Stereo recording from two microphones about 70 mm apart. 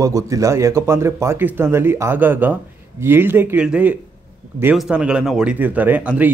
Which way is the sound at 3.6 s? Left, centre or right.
Right.